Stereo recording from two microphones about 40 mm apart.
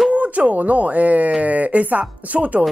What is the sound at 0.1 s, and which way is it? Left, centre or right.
Speech, right.